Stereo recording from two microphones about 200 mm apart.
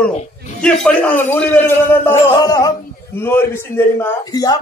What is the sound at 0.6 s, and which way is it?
Speech, 5° left (ahead or behind).